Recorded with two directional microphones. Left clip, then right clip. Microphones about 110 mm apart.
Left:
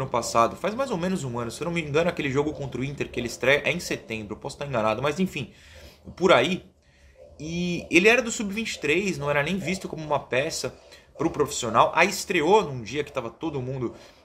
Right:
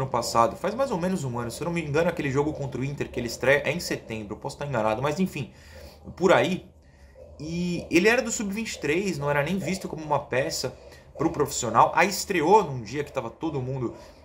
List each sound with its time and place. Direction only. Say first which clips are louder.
0.0 s speech: even; 15° left (ahead or behind)